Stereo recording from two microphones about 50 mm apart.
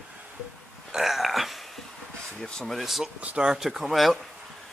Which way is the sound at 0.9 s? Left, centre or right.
Centre.